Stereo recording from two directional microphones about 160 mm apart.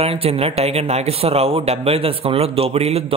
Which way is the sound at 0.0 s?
35° right (ahead or behind).